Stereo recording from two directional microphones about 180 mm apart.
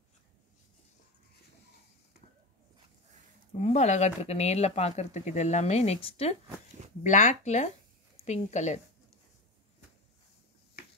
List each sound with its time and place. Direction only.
3.5 s speech: 35° left (ahead or behind)